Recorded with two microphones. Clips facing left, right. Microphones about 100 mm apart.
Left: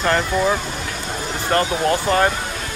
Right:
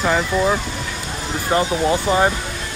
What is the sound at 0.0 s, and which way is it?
Speech, 5° right (ahead or behind).